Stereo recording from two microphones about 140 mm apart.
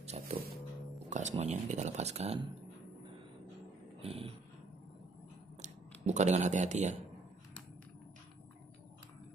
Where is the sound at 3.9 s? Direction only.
45° right (ahead or behind).